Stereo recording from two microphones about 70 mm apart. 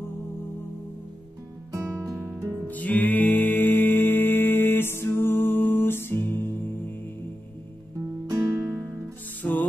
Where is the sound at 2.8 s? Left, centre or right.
Left.